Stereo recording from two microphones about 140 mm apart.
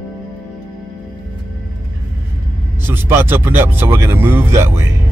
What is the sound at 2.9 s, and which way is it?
Speech, 15° right (ahead or behind).